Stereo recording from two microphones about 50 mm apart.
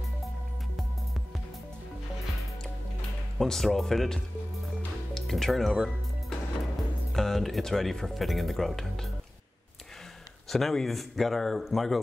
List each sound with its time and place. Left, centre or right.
3.3 s speech: centre
5.2 s speech: centre
7.1 s speech: centre
10.5 s speech: centre